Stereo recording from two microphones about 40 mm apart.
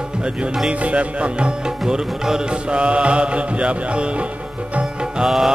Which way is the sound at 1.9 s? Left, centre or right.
Centre.